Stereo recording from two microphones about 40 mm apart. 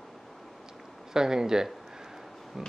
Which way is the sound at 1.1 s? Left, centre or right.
Centre.